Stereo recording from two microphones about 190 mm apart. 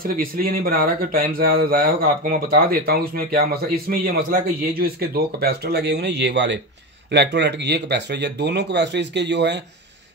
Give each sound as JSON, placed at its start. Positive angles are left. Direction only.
{"t": 0.0, "sound": "speech", "side_deg": -50}